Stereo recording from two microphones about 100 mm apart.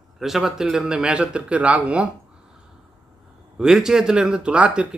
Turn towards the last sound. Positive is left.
turn(degrees=-10)  # may be behind; listen again after turning